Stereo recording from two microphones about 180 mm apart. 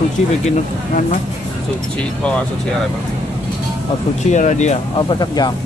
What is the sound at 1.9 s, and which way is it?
Speech, 5° left (ahead or behind).